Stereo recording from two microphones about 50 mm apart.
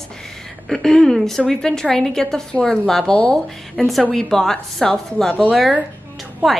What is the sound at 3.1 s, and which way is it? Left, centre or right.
Speech, left.